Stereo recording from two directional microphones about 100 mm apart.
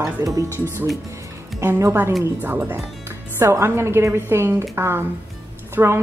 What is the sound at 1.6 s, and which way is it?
Speech, 30° right (ahead or behind).